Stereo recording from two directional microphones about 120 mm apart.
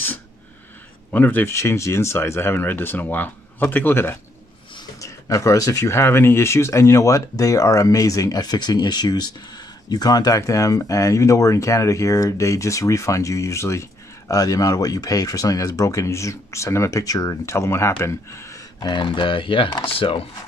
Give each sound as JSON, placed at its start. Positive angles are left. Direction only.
{"t": 1.1, "sound": "speech", "side_deg": 15}
{"t": 18.9, "sound": "speech", "side_deg": 40}